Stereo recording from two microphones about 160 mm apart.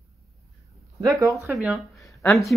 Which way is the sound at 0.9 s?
20° right (ahead or behind).